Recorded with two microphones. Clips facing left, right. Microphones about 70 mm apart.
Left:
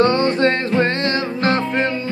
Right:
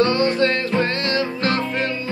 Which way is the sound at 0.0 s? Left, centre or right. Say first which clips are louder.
Left 2 dB; left.